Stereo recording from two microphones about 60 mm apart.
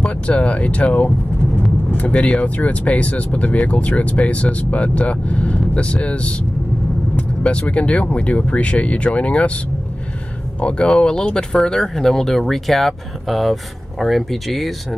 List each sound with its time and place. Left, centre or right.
0.0 s speech: centre
10.6 s speech: centre